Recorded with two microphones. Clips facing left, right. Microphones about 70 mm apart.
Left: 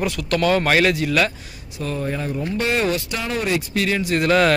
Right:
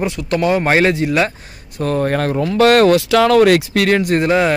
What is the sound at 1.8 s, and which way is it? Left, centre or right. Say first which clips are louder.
Speech: right 8 dB; right.